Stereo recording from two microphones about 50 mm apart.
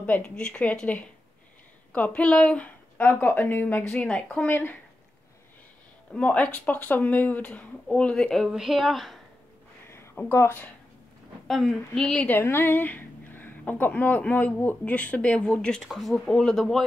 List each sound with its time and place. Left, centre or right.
0.0 s speech: left
2.0 s speech: left
3.0 s speech: left
3.9 s speech: centre
4.5 s speech: left
6.1 s speech: left
7.9 s speech: centre
8.5 s a woman's voice: centre
10.2 s speech: left
11.4 s a woman's voice: centre
12.4 s a woman's voice: left
15.8 s a woman's voice: centre
16.3 s a woman's voice: centre